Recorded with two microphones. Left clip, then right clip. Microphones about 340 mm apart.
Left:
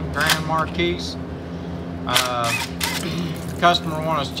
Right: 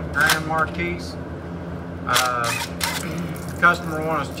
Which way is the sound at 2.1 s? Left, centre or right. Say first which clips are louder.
Left 1 dB; centre.